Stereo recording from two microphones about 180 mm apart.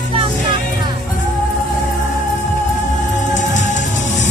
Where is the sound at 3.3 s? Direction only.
45° left (ahead or behind).